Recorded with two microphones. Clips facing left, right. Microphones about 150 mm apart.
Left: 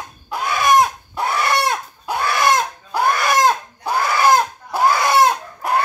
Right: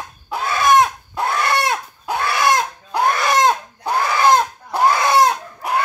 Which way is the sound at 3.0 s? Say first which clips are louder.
Even; 5° left (ahead or behind).